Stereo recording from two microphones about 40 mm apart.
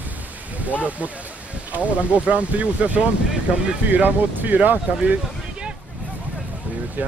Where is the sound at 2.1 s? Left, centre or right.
Right.